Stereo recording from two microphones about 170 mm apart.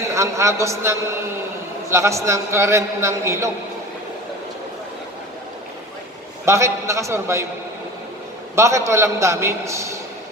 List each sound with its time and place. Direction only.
0.1 s a man's voice: 15° right (ahead or behind)
6.4 s a man's voice: 15° right (ahead or behind)
8.5 s a man's voice: 15° right (ahead or behind)